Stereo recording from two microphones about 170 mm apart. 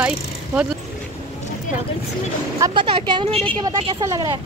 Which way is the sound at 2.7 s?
30° right (ahead or behind).